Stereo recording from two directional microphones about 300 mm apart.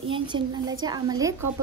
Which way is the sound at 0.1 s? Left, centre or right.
Centre.